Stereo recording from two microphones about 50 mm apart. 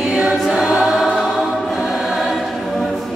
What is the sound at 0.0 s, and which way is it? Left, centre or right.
Choir, centre.